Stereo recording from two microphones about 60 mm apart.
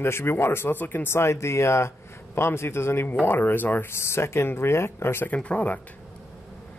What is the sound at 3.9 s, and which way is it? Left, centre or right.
Speech, left.